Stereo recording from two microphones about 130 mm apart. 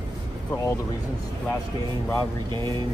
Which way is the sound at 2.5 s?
35° right (ahead or behind).